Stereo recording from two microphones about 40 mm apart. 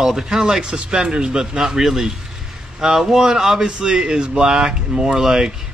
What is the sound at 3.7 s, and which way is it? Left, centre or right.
Speech, right.